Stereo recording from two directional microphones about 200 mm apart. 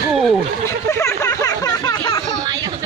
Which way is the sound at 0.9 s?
15° left (ahead or behind).